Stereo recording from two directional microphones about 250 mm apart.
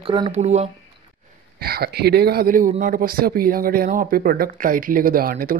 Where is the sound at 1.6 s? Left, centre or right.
Right.